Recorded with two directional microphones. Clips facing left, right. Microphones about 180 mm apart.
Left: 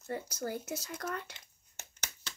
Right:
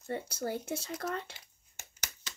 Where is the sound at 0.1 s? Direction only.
30° right (ahead or behind).